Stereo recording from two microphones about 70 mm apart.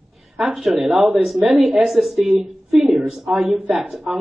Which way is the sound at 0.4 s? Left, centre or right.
Centre.